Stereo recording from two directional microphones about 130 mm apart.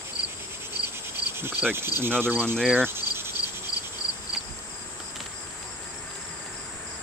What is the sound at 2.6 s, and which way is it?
Speech, centre (ahead or behind).